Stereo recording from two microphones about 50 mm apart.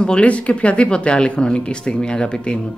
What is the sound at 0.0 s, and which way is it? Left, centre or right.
Speech, left.